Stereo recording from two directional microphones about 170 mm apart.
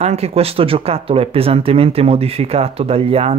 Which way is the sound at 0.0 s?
40° right (ahead or behind).